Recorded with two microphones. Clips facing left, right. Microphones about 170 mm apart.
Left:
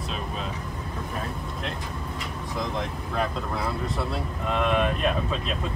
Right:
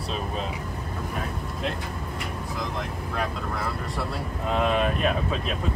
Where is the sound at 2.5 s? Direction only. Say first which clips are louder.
Left 4 dB; centre (ahead or behind).